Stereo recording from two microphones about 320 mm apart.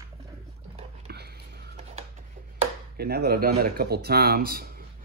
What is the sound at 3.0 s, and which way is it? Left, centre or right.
Speech, right.